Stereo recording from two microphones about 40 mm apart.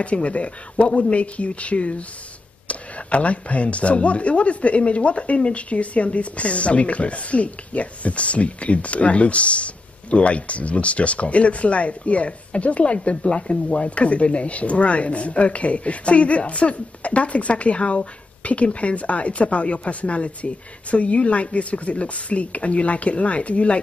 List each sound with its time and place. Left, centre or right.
0.0 s speech: left